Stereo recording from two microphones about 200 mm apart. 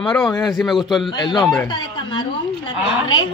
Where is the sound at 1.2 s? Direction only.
20° left (ahead or behind).